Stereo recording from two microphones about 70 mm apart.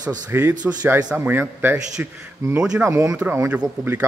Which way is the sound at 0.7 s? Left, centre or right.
Right.